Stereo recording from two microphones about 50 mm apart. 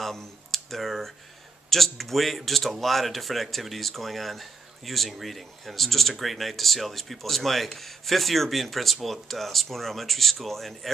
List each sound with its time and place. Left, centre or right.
0.0 s speech: centre